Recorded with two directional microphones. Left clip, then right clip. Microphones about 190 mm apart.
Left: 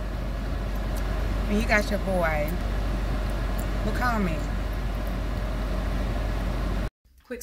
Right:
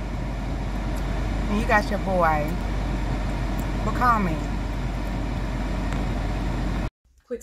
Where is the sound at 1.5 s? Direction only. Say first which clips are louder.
Right 2 dB; 15° left (ahead or behind).